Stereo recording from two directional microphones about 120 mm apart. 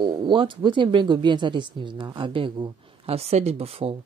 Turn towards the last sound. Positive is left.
turn(degrees=-55)  # may be behind; listen again after turning